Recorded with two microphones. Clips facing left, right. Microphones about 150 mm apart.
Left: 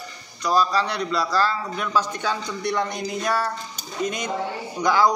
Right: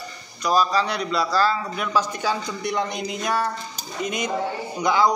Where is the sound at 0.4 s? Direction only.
15° right (ahead or behind).